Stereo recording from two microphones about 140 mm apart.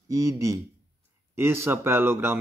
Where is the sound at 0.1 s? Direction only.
20° right (ahead or behind).